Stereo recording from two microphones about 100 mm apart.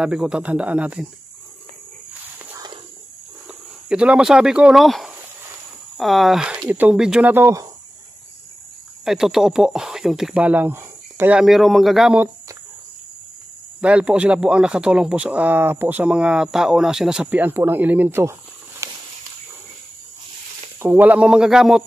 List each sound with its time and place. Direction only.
0.0 s speech: 10° right (ahead or behind)
3.4 s speech: 10° right (ahead or behind)
6.7 s speech: 15° right (ahead or behind)
9.0 s speech: 5° right (ahead or behind)
13.7 s speech: 10° right (ahead or behind)
18.8 s walk: 30° right (ahead or behind)
20.8 s speech: 20° right (ahead or behind)